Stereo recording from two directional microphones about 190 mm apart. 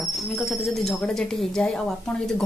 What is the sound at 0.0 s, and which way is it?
Speech, centre (ahead or behind).